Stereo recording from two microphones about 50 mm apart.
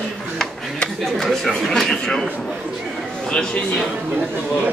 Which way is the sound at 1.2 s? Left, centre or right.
Centre.